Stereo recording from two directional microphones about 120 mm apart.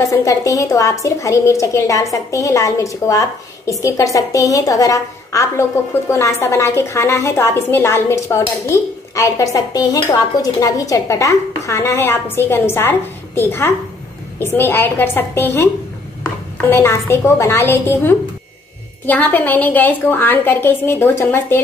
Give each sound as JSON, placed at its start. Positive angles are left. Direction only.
{"t": 0.1, "sound": "a woman's voice", "side_deg": 25}